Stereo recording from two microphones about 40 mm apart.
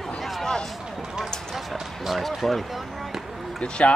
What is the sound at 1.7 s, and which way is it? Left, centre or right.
Speech, centre.